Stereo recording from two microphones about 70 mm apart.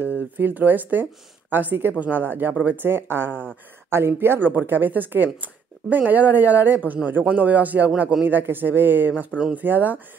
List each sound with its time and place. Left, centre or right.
0.0 s speech: right